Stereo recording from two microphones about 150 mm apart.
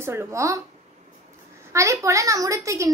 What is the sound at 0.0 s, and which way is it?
Speech, 15° right (ahead or behind).